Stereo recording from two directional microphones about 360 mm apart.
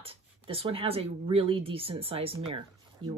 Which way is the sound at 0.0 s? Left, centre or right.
Centre.